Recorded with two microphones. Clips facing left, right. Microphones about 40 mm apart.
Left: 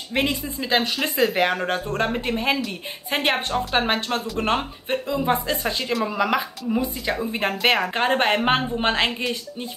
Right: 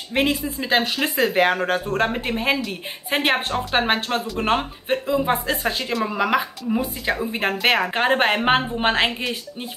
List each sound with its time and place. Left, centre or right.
0.1 s speech: centre